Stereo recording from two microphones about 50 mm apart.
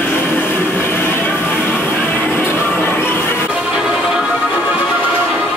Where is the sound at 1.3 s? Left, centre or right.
Left.